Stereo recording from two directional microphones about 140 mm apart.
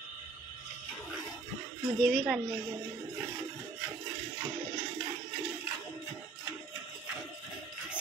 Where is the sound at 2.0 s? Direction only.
5° left (ahead or behind).